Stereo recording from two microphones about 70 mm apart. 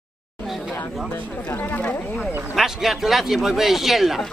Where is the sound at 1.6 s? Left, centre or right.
Left.